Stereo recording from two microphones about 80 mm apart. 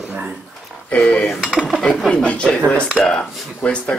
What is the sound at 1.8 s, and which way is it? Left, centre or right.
Speech, centre.